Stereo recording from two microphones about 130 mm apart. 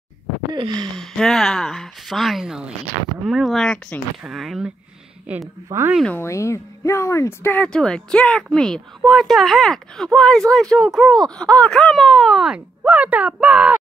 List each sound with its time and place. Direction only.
0.5 s a sound: 35° right (ahead or behind)
0.9 s a woman's voice: 5° left (ahead or behind); by 5.9 s 20° right (ahead or behind)
6.1 s speech: 20° left (ahead or behind)
7.6 s speech: 5° left (ahead or behind); by 13.7 s 10° right (ahead or behind)